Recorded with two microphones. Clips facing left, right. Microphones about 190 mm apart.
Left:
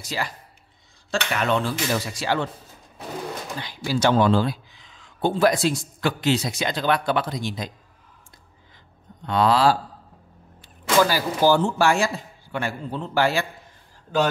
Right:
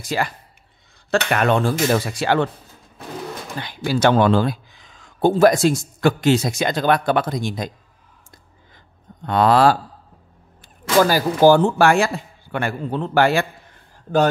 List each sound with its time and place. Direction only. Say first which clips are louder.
0.0 s speech: right 6 dB; 55° right (ahead or behind)
1.3 s speech: right 4 dB; 55° right (ahead or behind)
3.6 s speech: right 4 dB; 60° right (ahead or behind)
9.2 s speech: right 4 dB; 50° right (ahead or behind)
11.0 s speech: right 5 dB; 45° right (ahead or behind)